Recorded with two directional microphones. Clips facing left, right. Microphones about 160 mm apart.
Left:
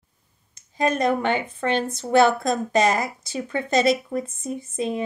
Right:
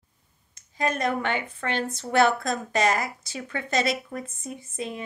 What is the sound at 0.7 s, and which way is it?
A woman's voice, 25° left (ahead or behind).